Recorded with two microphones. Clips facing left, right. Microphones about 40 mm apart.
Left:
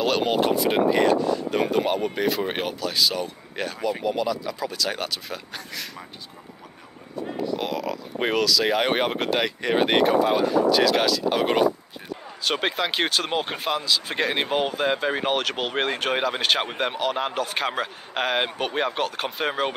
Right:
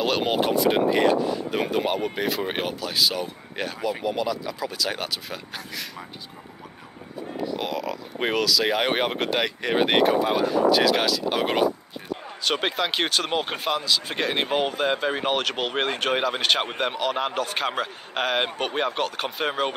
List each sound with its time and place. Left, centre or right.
0.0 s speech: centre
7.4 s speech: centre